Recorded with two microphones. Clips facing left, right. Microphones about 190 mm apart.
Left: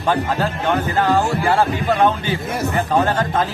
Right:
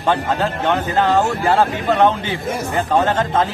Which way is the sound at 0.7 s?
25° right (ahead or behind).